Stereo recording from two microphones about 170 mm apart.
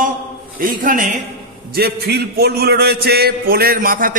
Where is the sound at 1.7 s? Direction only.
70° right (ahead or behind).